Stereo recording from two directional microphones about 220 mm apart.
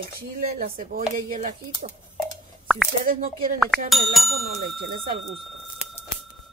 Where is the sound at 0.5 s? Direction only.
35° right (ahead or behind).